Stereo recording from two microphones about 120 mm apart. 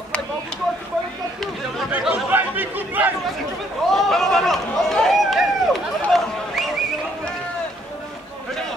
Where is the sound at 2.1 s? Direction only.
15° right (ahead or behind).